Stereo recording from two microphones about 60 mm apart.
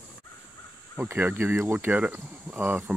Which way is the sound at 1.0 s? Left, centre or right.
Right.